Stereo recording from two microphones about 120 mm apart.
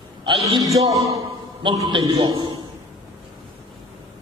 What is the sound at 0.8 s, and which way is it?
Speech, 30° right (ahead or behind).